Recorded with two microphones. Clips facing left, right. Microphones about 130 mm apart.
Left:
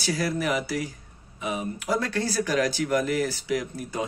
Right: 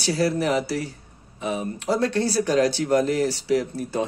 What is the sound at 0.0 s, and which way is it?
Speech, 30° right (ahead or behind).